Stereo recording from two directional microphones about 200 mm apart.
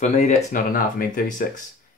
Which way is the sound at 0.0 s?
35° left (ahead or behind).